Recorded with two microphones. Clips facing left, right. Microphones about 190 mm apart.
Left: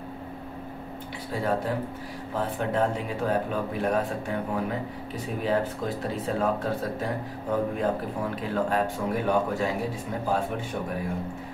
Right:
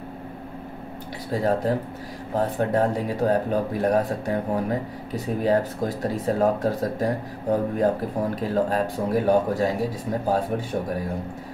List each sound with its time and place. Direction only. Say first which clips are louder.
1.3 s a man's voice: right 5 dB; 40° right (ahead or behind)